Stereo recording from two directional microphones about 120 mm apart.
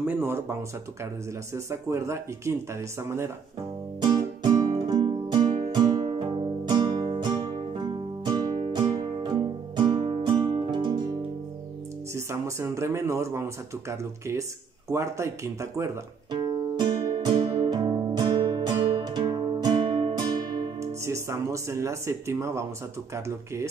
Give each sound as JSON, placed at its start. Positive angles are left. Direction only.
{"t": 0.0, "sound": "speech", "side_deg": -15}
{"t": 4.0, "sound": "music", "side_deg": -35}
{"t": 12.1, "sound": "speech", "side_deg": -25}
{"t": 16.3, "sound": "music", "side_deg": -40}
{"t": 21.0, "sound": "speech", "side_deg": -25}